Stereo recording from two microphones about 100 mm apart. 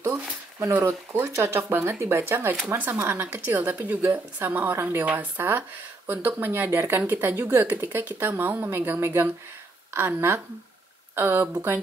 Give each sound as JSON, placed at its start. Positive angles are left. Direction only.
{"t": 0.0, "sound": "speech", "side_deg": -25}